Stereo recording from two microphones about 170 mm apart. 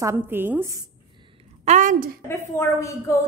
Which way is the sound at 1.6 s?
45° right (ahead or behind).